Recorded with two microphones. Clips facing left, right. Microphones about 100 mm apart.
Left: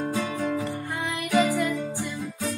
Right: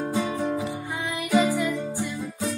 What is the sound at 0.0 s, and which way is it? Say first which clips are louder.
Music: right 1 dB; 15° right (ahead or behind).